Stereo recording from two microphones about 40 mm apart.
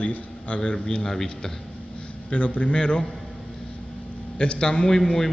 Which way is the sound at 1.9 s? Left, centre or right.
Left.